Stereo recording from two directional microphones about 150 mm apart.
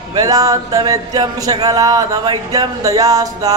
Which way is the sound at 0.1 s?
25° right (ahead or behind).